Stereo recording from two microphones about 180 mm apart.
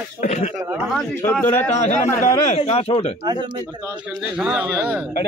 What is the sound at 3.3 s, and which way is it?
Speech, 25° right (ahead or behind).